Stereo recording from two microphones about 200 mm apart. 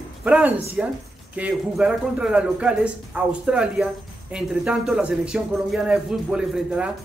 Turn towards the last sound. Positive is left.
turn(degrees=-5)  # may be behind; listen again after turning